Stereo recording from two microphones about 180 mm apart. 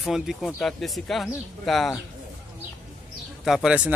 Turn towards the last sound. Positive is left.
turn(degrees=-5)  # may be behind; listen again after turning